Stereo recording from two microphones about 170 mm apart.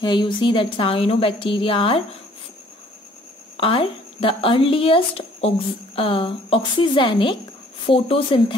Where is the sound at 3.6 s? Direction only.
30° left (ahead or behind).